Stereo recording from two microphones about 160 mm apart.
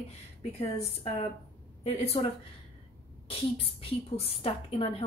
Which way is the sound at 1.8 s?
40° left (ahead or behind).